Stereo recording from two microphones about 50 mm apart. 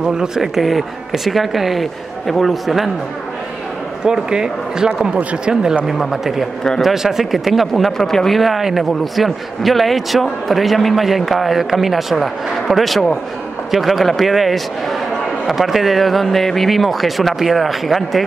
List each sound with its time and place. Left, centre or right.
0.0 s speech: centre
4.0 s speech: centre